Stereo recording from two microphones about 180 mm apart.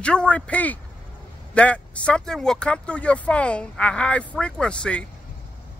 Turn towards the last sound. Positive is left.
turn(degrees=5)  # may be behind; listen again after turning